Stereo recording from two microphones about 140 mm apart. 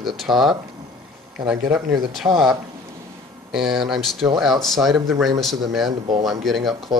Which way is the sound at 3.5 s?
Centre (ahead or behind).